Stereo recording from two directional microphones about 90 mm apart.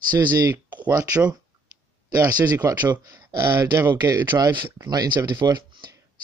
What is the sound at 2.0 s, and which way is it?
Speech, 45° right (ahead or behind).